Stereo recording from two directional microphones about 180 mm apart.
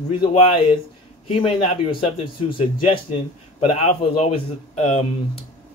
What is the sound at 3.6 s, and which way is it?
Speech, 35° left (ahead or behind).